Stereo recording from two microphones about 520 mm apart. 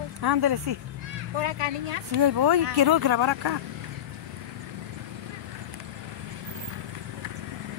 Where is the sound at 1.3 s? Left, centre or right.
Right.